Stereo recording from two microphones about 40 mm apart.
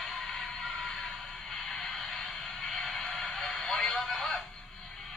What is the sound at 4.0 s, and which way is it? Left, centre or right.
Radio, centre.